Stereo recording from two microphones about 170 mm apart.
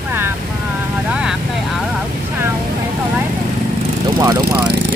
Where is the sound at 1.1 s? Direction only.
5° right (ahead or behind).